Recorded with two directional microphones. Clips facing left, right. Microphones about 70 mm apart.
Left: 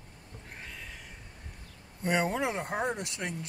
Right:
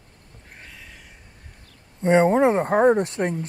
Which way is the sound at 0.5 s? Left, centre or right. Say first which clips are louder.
Right 1 dB; centre.